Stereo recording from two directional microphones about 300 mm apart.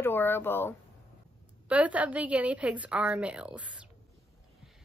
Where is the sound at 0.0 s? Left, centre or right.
Centre.